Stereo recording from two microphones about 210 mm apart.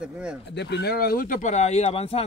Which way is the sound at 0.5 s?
55° left (ahead or behind).